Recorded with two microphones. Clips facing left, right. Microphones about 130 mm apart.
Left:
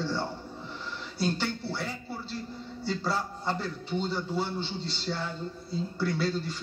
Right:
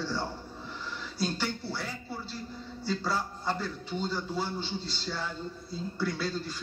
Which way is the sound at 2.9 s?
25° left (ahead or behind).